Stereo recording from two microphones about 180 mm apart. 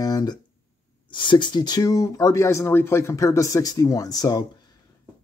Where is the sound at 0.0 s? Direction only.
20° left (ahead or behind).